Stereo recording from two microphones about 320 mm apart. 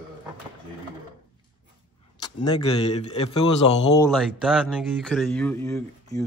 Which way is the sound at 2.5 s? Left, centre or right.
Centre.